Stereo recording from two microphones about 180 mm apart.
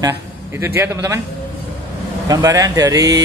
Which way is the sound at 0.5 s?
15° right (ahead or behind).